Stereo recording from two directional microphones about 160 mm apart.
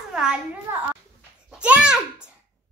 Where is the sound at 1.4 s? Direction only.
5° right (ahead or behind).